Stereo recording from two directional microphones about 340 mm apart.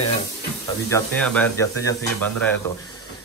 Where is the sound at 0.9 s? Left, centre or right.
Centre.